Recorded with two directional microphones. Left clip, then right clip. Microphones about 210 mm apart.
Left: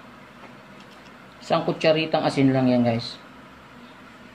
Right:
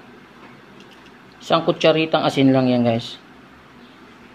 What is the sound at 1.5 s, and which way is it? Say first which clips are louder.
Speech: right 4 dB; 25° right (ahead or behind).